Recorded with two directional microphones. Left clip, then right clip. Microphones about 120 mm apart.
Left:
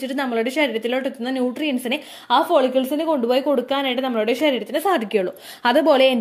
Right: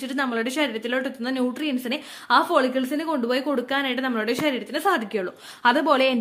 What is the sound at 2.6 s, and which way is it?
Speech, 15° left (ahead or behind).